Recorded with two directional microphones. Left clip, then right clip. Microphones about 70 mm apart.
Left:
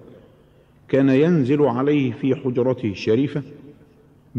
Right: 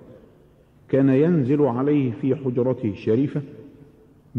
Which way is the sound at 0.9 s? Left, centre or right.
Right.